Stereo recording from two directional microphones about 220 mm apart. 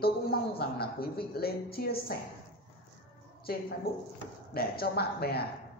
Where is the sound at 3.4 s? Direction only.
45° left (ahead or behind).